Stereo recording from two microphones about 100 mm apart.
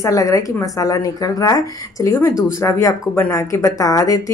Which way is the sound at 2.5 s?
30° left (ahead or behind).